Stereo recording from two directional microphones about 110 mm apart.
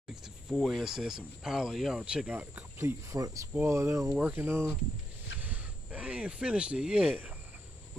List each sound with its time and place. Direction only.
0.1 s speech: 5° right (ahead or behind); by 3.3 s 25° right (ahead or behind)
3.5 s cricket: 25° right (ahead or behind)
4.1 s cricket: 15° right (ahead or behind)
5.4 s speech: 15° right (ahead or behind)